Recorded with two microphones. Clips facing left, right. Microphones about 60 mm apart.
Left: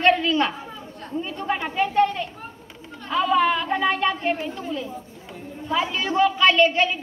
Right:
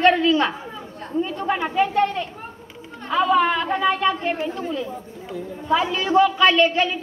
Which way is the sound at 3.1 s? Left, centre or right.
Right.